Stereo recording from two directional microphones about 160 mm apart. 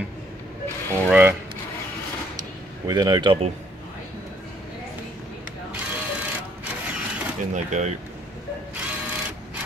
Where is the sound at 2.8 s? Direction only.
25° right (ahead or behind).